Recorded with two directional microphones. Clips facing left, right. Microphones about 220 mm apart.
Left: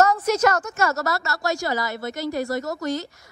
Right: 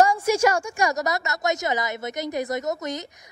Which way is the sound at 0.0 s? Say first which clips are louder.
Even; 10° right (ahead or behind).